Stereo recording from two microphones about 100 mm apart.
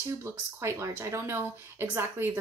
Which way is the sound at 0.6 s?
25° right (ahead or behind).